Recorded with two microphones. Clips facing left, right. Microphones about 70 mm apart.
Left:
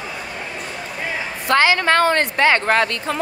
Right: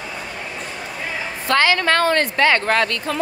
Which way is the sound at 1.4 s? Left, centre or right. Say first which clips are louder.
Left 1 dB; centre.